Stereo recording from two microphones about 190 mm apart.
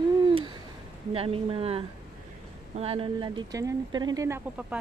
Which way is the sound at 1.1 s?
30° right (ahead or behind).